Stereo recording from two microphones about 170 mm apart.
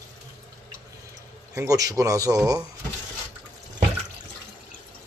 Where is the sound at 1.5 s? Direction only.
20° right (ahead or behind).